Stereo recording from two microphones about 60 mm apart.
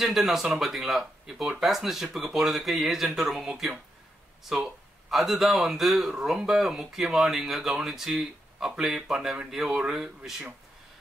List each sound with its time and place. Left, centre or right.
0.0 s speech: centre
5.1 s speech: centre